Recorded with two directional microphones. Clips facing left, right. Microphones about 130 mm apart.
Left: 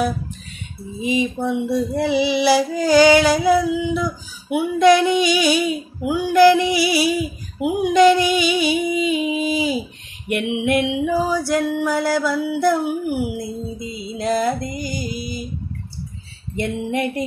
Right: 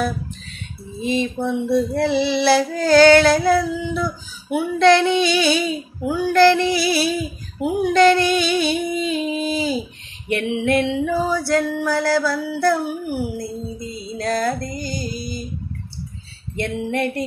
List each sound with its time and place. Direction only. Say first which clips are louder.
1.0 s female singing: left 1 dB; 15° left (ahead or behind)
13.4 s music: left 1 dB; 20° left (ahead or behind)
16.5 s female singing: even; 15° left (ahead or behind)